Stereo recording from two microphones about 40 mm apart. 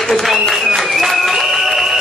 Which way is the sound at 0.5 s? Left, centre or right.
Centre.